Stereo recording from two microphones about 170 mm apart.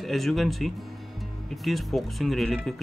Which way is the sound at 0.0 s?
Centre (ahead or behind).